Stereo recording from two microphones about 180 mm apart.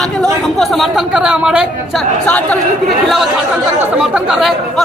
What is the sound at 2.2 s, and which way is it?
Speech, 10° left (ahead or behind).